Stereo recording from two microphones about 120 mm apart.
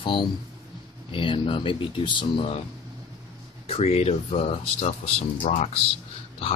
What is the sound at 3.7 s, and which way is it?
Speech, 60° left (ahead or behind).